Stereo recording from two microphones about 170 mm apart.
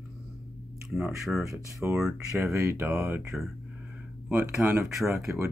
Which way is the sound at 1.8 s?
15° right (ahead or behind).